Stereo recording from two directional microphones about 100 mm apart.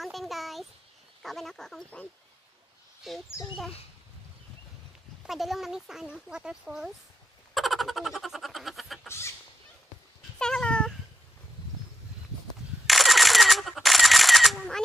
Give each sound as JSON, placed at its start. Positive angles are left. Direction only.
{"t": 0.0, "sound": "a sound", "side_deg": 0}
{"t": 1.2, "sound": "speech", "side_deg": 0}
{"t": 3.0, "sound": "speech", "side_deg": -5}
{"t": 5.2, "sound": "speech", "side_deg": 0}
{"t": 7.5, "sound": "a sound", "side_deg": 0}
{"t": 9.0, "sound": "fowl", "side_deg": 25}
{"t": 10.4, "sound": "dog", "side_deg": 10}
{"t": 12.8, "sound": "camera", "side_deg": 0}